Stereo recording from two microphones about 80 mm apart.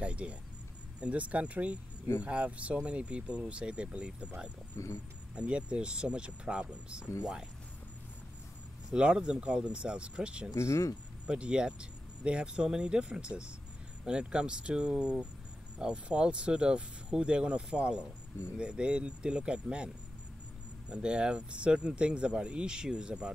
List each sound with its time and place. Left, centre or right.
0.0 s speech: centre
4.7 s speech: left
5.3 s speech: centre
8.9 s speech: centre
10.5 s speech: left
11.2 s speech: centre
20.9 s speech: centre